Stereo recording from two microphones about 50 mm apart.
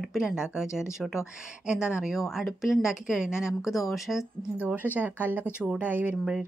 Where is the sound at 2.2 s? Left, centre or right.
Centre.